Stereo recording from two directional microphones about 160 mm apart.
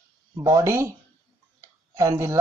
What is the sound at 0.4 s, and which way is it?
Speech, 20° right (ahead or behind).